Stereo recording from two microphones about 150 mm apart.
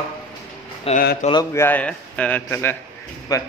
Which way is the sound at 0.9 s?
90° left.